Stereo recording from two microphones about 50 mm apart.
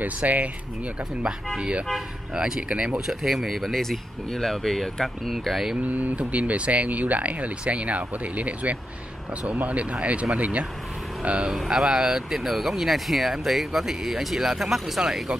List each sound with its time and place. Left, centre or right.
0.0 s speech: right
1.6 s speech: centre
3.1 s speech: centre
3.8 s speech: centre
5.8 s speech: right
11.2 s speech: centre
12.4 s speech: centre